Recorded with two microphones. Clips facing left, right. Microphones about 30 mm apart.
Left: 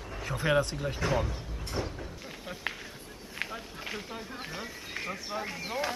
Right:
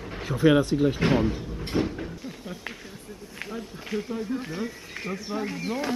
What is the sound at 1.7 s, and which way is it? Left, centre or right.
Speech, right.